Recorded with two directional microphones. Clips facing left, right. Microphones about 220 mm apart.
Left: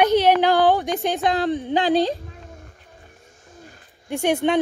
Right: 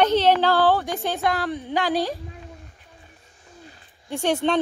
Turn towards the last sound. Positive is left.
turn(degrees=10)  # may be behind; listen again after turning